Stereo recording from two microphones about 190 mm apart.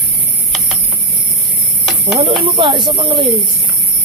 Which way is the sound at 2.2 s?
30° right (ahead or behind).